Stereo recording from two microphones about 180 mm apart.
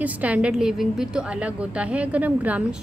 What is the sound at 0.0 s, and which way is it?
A woman's voice, 10° right (ahead or behind).